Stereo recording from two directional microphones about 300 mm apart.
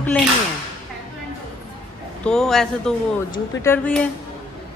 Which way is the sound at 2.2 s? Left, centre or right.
Centre.